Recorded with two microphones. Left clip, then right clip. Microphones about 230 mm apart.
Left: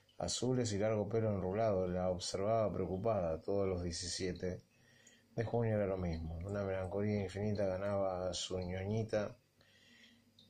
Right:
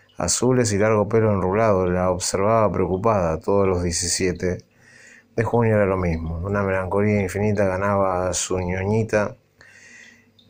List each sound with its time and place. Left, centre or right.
0.2 s speech: right